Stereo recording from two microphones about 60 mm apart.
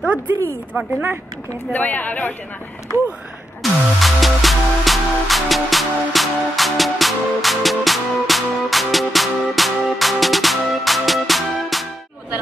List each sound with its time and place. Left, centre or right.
0.7 s speech: right
1.7 s speech: left
3.6 s music: centre